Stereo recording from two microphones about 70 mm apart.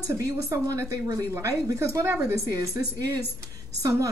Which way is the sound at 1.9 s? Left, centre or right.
Right.